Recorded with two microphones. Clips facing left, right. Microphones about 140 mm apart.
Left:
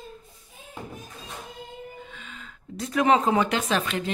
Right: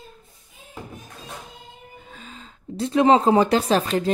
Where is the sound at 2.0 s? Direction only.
35° right (ahead or behind).